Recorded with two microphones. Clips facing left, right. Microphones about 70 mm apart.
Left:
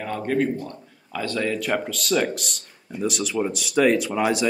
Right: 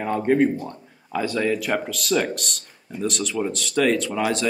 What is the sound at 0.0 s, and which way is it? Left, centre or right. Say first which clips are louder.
A man's voice: right 4 dB; centre.